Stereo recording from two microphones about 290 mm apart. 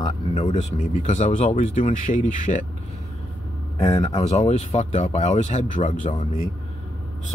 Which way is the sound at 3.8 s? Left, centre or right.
Centre.